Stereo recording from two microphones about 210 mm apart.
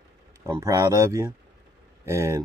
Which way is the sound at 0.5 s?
15° right (ahead or behind).